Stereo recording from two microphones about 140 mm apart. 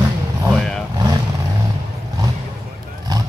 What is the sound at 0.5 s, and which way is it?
Vehicle, 5° left (ahead or behind).